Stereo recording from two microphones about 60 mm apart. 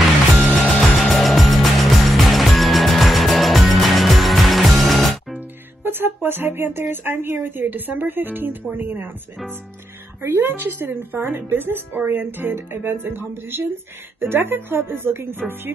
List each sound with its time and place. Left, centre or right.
0.6 s music: centre
5.9 s a woman's voice: right
10.2 s a woman's voice: right